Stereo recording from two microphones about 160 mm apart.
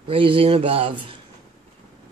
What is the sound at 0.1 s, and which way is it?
Speech, 35° right (ahead or behind).